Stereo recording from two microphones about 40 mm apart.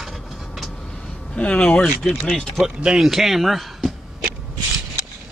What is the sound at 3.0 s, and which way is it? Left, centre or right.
Speech, centre.